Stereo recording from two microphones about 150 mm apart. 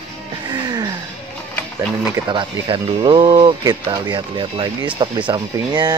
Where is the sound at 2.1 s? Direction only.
30° right (ahead or behind).